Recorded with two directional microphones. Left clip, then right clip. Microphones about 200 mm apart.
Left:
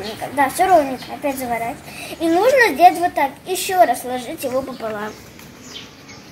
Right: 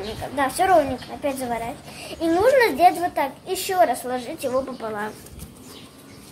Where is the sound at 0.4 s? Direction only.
10° left (ahead or behind).